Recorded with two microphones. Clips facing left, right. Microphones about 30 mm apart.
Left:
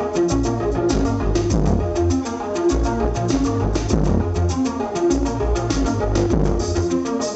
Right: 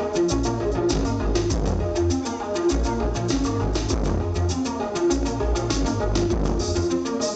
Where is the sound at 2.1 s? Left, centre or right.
Right.